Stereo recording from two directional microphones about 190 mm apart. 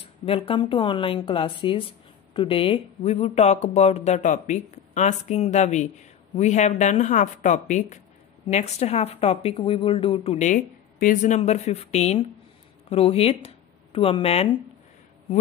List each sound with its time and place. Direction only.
0.0 s a woman's voice: 30° left (ahead or behind)